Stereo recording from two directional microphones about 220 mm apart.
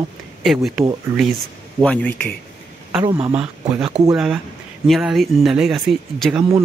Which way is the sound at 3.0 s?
25° right (ahead or behind).